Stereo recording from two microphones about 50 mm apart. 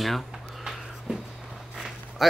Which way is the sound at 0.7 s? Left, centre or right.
Centre.